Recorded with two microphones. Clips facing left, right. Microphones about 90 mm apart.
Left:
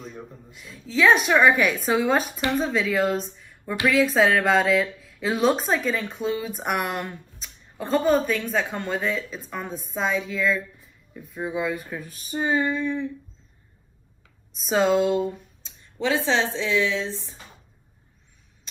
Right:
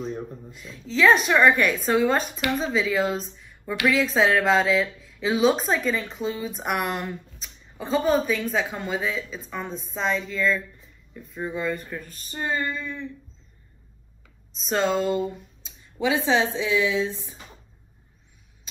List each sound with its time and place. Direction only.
0.5 s speech: centre (ahead or behind)
14.6 s speech: 5° left (ahead or behind)
15.2 s a sound: 10° right (ahead or behind)
16.3 s a woman's voice: 15° right (ahead or behind)